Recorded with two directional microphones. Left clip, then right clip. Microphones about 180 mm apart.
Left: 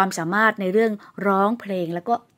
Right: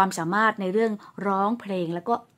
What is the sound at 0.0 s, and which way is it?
A woman's voice, 15° left (ahead or behind).